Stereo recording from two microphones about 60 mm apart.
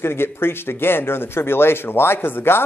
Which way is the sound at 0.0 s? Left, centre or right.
Left.